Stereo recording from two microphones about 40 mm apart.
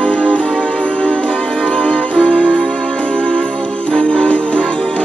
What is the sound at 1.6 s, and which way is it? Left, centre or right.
Music, left.